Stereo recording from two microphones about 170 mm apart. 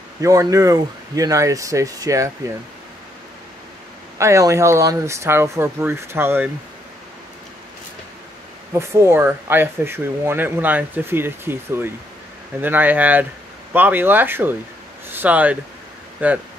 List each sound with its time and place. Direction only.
0.2 s speech: 20° right (ahead or behind)
4.2 s speech: 20° right (ahead or behind)
8.7 s speech: 15° right (ahead or behind)